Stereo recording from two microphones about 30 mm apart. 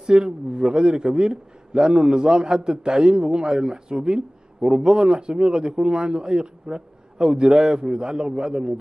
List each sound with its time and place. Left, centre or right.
0.0 s speech: right